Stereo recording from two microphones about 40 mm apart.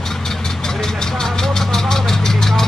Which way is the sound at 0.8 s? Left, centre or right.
Centre.